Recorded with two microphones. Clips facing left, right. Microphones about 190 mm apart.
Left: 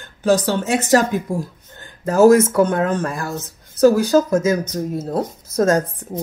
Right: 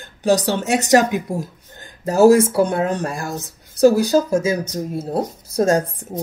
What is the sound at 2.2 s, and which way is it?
Speech, 30° right (ahead or behind).